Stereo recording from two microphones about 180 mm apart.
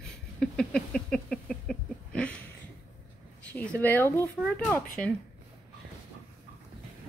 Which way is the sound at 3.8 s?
10° left (ahead or behind).